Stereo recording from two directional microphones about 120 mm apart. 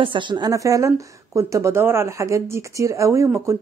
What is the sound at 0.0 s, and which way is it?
Speech, 40° right (ahead or behind).